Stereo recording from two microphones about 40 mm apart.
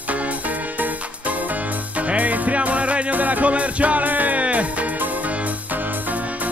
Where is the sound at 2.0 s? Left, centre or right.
Right.